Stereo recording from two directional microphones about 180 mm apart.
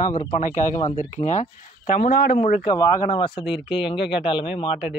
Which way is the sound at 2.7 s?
25° left (ahead or behind).